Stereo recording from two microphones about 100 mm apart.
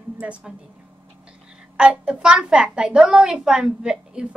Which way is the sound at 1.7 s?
10° right (ahead or behind).